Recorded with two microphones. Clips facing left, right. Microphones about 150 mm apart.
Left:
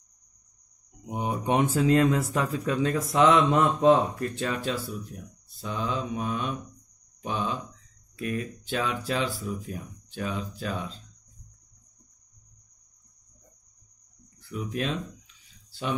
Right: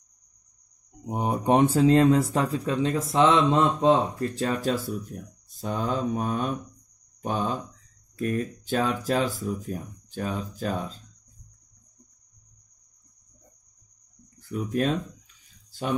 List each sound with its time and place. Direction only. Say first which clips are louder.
1.0 s speech: right 4 dB; 40° right (ahead or behind)
14.4 s speech: right 5 dB; 45° right (ahead or behind)